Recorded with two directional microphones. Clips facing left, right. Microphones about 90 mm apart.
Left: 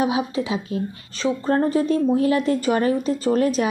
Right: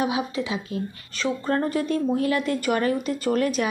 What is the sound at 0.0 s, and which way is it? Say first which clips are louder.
Speech: left 3 dB; 35° left (ahead or behind).